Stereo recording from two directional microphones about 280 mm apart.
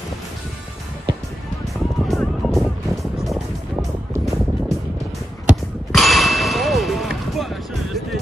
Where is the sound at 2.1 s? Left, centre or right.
Centre.